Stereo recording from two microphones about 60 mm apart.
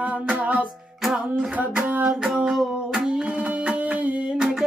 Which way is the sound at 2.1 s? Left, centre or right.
Centre.